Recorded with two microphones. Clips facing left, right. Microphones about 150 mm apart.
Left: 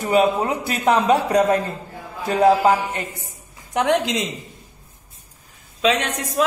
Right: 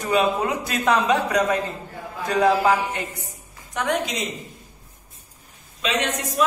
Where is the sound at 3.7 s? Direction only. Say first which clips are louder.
Left 5 dB; 75° left (ahead or behind).